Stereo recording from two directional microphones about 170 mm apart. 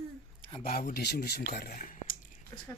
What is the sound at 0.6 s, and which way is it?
Speech, 55° left (ahead or behind).